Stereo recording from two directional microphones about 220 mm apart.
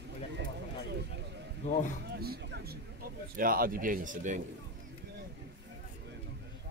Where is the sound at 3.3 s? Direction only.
40° right (ahead or behind).